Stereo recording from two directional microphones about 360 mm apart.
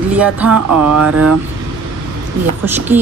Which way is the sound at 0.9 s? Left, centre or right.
Right.